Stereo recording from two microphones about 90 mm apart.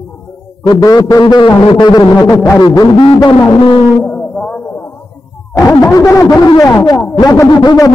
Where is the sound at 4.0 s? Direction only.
15° left (ahead or behind).